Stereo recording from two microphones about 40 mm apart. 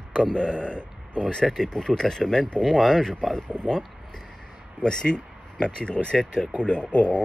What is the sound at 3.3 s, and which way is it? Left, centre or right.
Speech, left.